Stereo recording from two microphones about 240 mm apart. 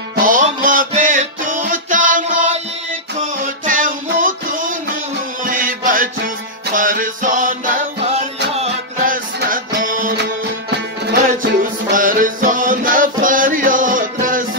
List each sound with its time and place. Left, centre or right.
0.1 s music: right
3.6 s music: right
11.9 s music: right